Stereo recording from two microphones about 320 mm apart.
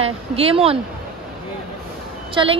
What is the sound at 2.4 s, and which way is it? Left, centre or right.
Speech, centre.